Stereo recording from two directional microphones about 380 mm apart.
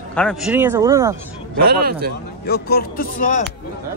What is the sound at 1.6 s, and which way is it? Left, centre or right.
Speech, right.